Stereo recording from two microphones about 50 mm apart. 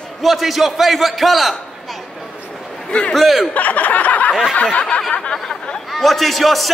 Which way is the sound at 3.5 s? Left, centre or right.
Left.